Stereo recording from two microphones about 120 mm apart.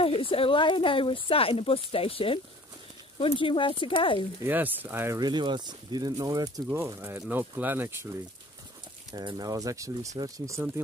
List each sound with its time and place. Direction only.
0.0 s speech: 50° left (ahead or behind)
4.4 s speech: 15° right (ahead or behind)
5.2 s speech: 40° right (ahead or behind)
6.7 s speech: 20° right (ahead or behind)
9.1 s speech: 35° right (ahead or behind)